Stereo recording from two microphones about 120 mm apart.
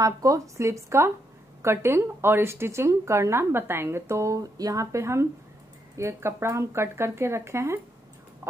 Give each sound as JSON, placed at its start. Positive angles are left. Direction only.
{"t": 0.0, "sound": "speech", "side_deg": -30}